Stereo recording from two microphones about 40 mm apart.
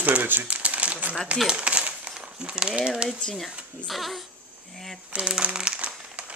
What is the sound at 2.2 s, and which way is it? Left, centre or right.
Speech, right.